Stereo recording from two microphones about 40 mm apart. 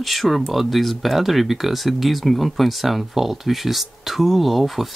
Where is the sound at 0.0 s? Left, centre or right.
Centre.